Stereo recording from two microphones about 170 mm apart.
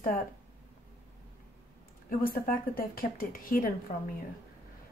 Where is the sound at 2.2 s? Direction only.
60° left (ahead or behind).